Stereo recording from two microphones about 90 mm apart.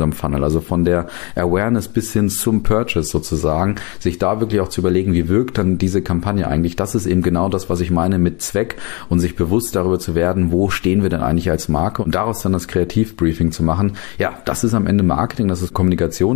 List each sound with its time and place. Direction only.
0.0 s speech: 40° right (ahead or behind)
1.8 s speech: 55° right (ahead or behind)
10.2 s speech: 40° right (ahead or behind)
11.3 s speech: 55° right (ahead or behind)
12.3 s speech: 55° right (ahead or behind)